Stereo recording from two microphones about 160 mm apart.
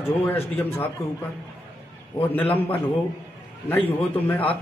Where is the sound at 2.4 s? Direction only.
35° left (ahead or behind).